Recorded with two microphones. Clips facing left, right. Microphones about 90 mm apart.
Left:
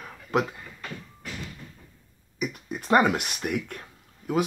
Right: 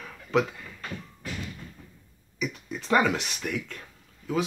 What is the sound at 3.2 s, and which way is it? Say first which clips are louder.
Speech: left 3 dB; 55° left (ahead or behind).